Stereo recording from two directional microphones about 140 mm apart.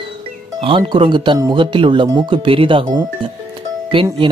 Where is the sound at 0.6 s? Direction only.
35° right (ahead or behind).